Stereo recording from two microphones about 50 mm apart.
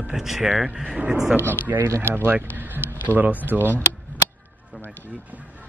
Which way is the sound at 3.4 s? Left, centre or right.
Right.